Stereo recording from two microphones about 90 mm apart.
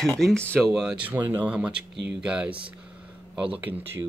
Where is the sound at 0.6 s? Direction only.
5° right (ahead or behind).